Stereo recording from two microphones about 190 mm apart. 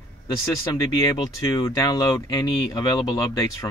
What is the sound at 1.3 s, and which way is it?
Speech, 15° left (ahead or behind).